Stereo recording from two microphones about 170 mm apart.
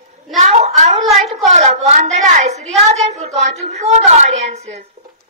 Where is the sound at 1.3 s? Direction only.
40° right (ahead or behind).